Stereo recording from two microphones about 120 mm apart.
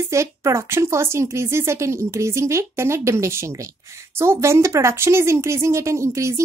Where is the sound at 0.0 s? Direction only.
25° right (ahead or behind).